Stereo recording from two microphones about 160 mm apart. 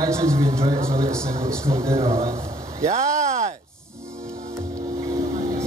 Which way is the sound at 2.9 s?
45° right (ahead or behind).